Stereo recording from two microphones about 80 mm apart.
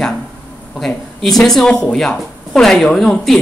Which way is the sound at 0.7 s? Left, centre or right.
Centre.